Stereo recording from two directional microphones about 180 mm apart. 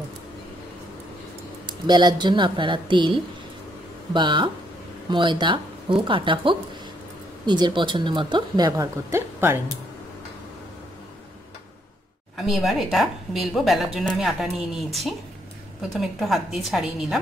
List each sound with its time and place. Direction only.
1.7 s speech: 25° right (ahead or behind)
12.4 s a woman's voice: centre (ahead or behind)